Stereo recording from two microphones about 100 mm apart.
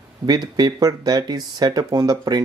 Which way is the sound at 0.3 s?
45° right (ahead or behind).